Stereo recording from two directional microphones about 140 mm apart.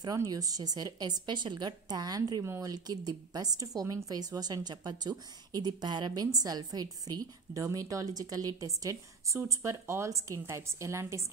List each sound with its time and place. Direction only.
0.0 s a woman's voice: 25° right (ahead or behind)